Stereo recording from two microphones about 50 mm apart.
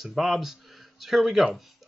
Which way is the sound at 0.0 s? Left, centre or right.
Centre.